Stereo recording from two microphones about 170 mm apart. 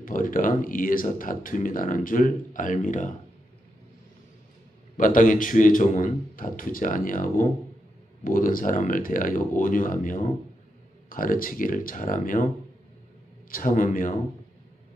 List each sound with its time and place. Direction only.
0.0 s speech: 55° left (ahead or behind)
4.9 s speech: 50° left (ahead or behind)
13.5 s speech: 55° left (ahead or behind)